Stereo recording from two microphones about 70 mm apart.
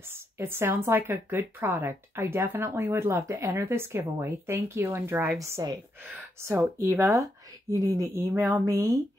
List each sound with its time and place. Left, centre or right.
0.1 s a woman's voice: right
5.6 s speech: right
6.4 s a woman's voice: right
7.7 s speech: right